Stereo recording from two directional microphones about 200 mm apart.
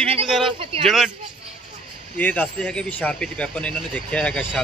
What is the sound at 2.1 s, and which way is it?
Speech, 10° left (ahead or behind).